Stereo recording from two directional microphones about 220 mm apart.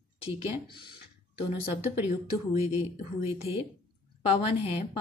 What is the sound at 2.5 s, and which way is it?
Speech, 30° left (ahead or behind).